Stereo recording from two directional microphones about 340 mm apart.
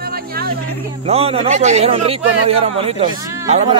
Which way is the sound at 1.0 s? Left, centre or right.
Centre.